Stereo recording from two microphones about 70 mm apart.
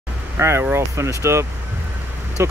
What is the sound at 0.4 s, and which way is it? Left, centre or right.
Speech, right.